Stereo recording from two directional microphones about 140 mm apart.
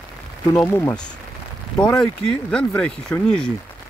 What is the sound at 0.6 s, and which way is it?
Speech, 20° left (ahead or behind).